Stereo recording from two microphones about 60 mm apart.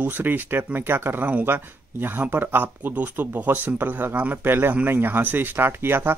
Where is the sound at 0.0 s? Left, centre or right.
Right.